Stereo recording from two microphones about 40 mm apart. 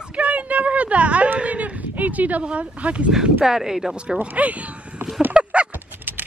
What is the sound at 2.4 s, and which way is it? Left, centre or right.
Speech, right.